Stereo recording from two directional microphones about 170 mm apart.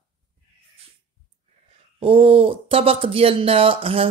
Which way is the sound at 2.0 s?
30° right (ahead or behind).